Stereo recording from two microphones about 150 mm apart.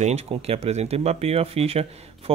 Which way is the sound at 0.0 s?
40° right (ahead or behind).